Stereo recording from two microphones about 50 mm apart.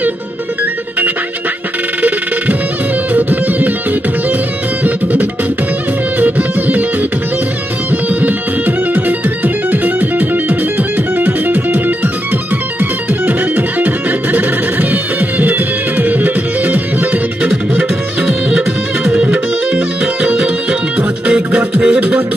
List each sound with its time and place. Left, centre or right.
2.0 s music: right
4.8 s music: right
13.2 s music: right
19.3 s music: right